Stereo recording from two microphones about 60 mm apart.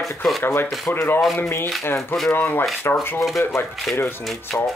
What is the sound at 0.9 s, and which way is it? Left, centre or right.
Speech, left.